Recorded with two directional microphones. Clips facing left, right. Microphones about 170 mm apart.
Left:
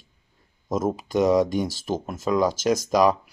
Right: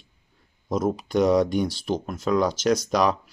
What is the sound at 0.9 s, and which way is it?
Speech, 5° left (ahead or behind).